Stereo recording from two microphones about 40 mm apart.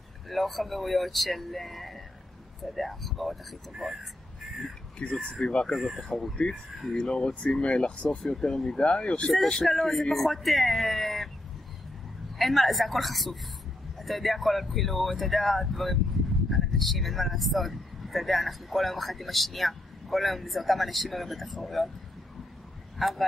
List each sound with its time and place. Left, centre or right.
0.3 s speech: centre
5.2 s speech: centre
6.1 s speech: centre
6.9 s speech: centre
8.4 s speech: centre
9.3 s speech: centre
12.4 s speech: centre
22.9 s speech: centre